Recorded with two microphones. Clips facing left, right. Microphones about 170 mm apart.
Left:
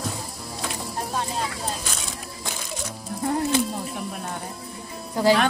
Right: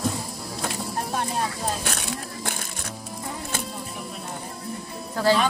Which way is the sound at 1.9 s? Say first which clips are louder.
Right 4 dB; 65° right (ahead or behind).